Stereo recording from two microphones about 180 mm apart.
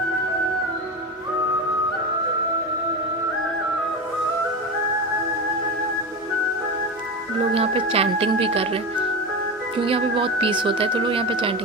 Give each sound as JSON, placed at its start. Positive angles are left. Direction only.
{"t": 7.5, "sound": "speech", "side_deg": -35}
{"t": 9.8, "sound": "speech", "side_deg": -30}